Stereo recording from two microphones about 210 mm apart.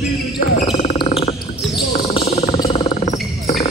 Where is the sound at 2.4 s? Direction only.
30° left (ahead or behind).